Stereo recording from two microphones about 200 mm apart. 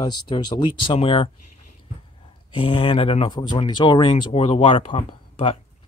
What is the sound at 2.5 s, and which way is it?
Speech, 25° left (ahead or behind).